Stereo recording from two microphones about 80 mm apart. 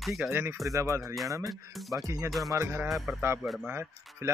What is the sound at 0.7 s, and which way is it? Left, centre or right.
Speech, right.